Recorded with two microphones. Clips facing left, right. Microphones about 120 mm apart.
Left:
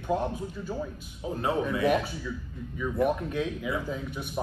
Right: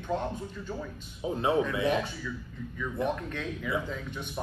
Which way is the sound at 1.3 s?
20° right (ahead or behind).